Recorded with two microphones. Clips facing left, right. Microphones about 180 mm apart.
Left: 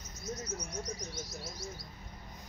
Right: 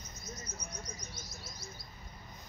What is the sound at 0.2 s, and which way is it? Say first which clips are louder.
Bird: left 8 dB; 85° left.